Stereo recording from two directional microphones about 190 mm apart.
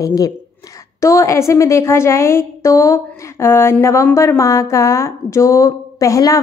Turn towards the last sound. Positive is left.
turn(degrees=15)  # may be behind; listen again after turning